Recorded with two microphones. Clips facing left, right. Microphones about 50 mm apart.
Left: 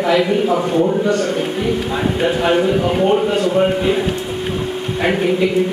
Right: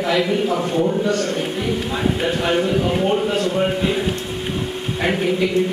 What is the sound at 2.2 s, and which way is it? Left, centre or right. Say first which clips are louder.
A man's voice: left 7 dB; centre.